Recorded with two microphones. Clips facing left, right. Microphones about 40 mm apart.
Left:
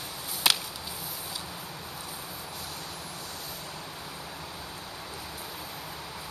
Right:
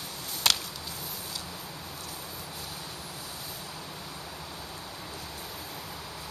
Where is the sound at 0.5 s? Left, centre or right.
Centre.